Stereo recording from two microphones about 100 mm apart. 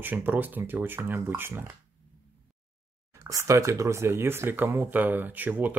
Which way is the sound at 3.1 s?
30° right (ahead or behind).